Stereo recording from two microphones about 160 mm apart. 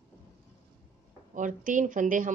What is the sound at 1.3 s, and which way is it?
A woman's voice, 55° right (ahead or behind).